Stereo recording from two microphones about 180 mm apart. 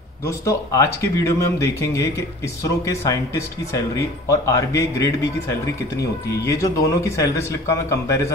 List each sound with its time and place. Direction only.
0.3 s speech: 15° left (ahead or behind)